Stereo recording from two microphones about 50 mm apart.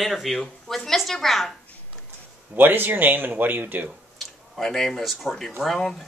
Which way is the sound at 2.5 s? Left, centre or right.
Right.